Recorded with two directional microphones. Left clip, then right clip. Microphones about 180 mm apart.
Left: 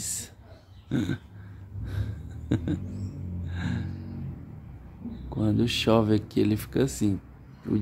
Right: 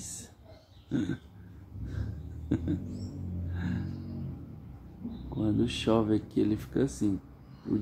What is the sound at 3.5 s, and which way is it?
Music, 15° left (ahead or behind).